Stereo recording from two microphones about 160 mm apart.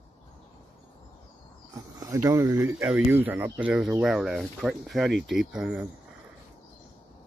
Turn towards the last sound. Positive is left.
turn(degrees=-5)  # may be behind; listen again after turning